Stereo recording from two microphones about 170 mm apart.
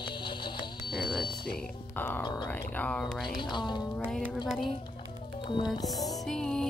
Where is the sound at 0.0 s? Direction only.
30° left (ahead or behind).